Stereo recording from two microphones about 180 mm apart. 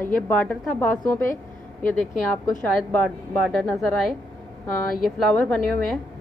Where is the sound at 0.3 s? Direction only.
10° left (ahead or behind).